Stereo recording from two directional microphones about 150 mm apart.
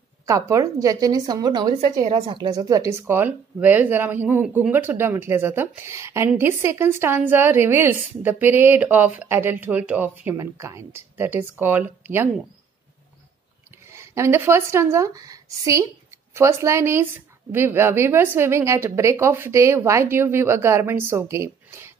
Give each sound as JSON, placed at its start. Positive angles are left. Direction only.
{"t": 0.3, "sound": "a woman's voice", "side_deg": -20}
{"t": 13.9, "sound": "a woman's voice", "side_deg": -20}